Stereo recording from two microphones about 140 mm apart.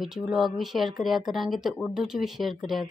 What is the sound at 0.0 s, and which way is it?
Speech, centre (ahead or behind).